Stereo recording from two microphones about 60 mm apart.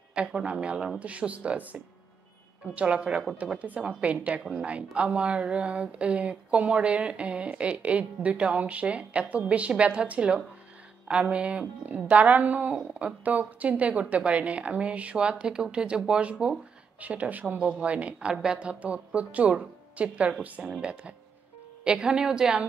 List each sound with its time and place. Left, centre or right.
0.1 s a woman's voice: centre